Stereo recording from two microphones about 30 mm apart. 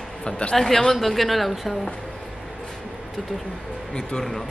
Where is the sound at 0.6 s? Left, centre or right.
Centre.